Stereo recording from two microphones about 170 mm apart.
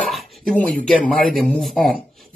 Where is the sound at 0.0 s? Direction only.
Centre (ahead or behind).